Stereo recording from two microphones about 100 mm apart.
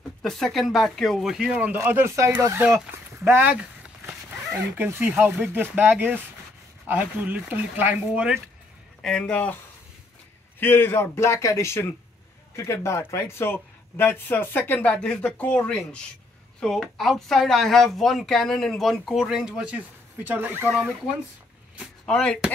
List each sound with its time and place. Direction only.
0.2 s speech: 5° left (ahead or behind); by 2.3 s 30° right (ahead or behind)
3.3 s speech: 15° right (ahead or behind)
4.7 s speech: 20° right (ahead or behind)
9.0 s speech: 10° left (ahead or behind)
10.6 s speech: 20° left (ahead or behind); by 20.6 s 20° right (ahead or behind)
20.6 s speech: centre (ahead or behind)
22.0 s speech: 5° left (ahead or behind)